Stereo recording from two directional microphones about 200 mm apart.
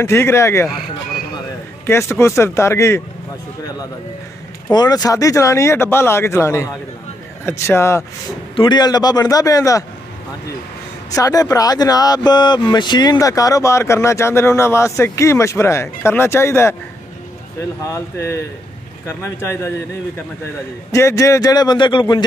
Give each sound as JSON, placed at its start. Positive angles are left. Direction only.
{"t": 0.0, "sound": "speech", "side_deg": 15}
{"t": 1.9, "sound": "speech", "side_deg": 10}
{"t": 4.6, "sound": "a man's voice", "side_deg": 20}
{"t": 11.1, "sound": "speech", "side_deg": 15}
{"t": 17.8, "sound": "speech", "side_deg": 15}
{"t": 20.9, "sound": "a man's voice", "side_deg": 15}